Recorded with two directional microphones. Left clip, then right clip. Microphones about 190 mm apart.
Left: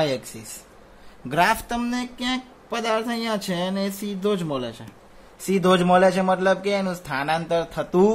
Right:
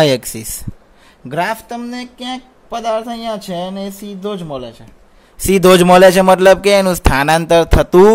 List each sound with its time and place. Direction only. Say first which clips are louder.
0.0 s speech: right 11 dB; 40° right (ahead or behind)
1.3 s speech: right 2 dB; 15° right (ahead or behind)
5.5 s a man's voice: right 10 dB; 55° right (ahead or behind)